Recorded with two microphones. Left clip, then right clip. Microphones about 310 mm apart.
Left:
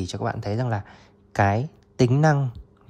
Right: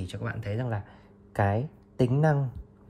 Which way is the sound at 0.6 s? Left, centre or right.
Right.